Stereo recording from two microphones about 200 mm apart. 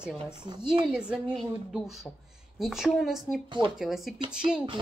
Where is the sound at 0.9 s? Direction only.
5° right (ahead or behind).